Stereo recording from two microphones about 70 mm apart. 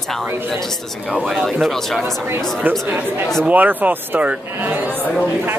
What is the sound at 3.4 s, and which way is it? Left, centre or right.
Speech, right.